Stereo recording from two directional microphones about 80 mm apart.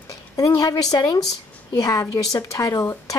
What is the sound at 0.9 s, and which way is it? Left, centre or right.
Speech, left.